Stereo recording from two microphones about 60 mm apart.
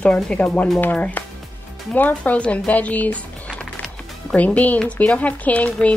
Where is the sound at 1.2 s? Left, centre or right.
Left.